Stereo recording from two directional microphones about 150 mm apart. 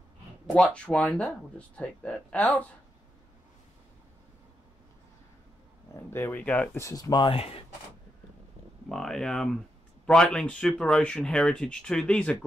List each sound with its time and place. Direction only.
0.7 s speech: 10° left (ahead or behind)
6.0 s speech: 15° left (ahead or behind)
7.3 s speech: 40° left (ahead or behind)
8.8 s speech: centre (ahead or behind)